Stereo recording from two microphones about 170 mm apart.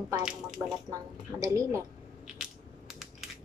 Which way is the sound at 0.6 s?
25° right (ahead or behind).